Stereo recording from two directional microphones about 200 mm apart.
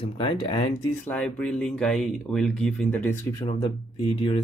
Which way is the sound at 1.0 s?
5° left (ahead or behind).